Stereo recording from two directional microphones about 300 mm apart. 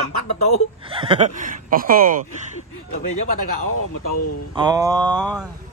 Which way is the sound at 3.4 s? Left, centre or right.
Left.